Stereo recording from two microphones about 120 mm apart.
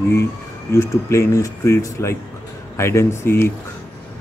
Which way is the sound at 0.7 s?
20° left (ahead or behind).